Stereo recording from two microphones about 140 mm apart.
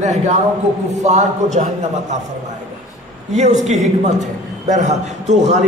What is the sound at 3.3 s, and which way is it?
A woman's voice, 55° right (ahead or behind).